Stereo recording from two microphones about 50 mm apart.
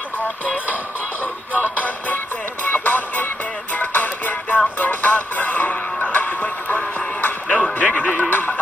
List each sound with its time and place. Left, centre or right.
1.6 s music: left